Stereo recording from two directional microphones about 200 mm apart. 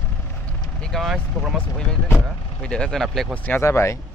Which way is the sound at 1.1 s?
5° right (ahead or behind).